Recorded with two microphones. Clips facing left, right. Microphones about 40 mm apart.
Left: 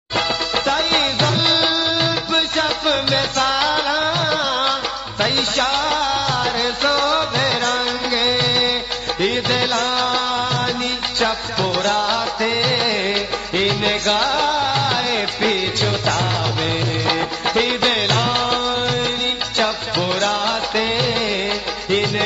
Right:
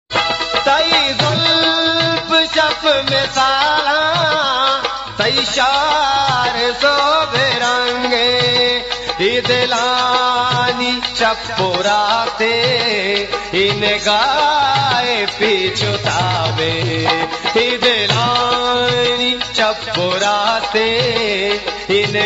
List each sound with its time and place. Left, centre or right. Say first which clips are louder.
0.7 s music: right 6 dB; right
2.3 s music: right 7 dB; right
12.0 s music: right 4 dB; right
17.0 s music: right 3 dB; right